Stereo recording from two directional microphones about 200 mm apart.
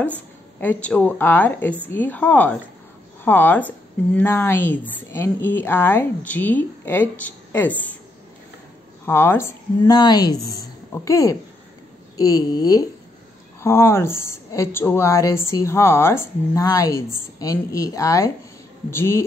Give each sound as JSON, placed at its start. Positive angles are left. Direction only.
{"t": 0.6, "sound": "a woman's voice", "side_deg": 5}
{"t": 9.0, "sound": "a woman's voice", "side_deg": 10}